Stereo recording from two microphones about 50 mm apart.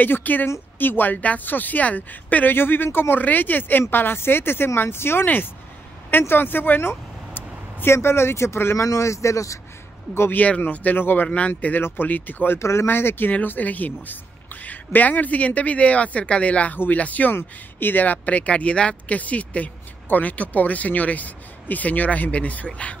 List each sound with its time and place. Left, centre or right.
0.0 s speech: left
2.5 s speech: left
7.9 s speech: left
8.7 s speech: left
10.3 s speech: left
11.0 s speech: left
11.2 s speech: left
12.5 s speech: left
12.8 s speech: left
17.4 s speech: left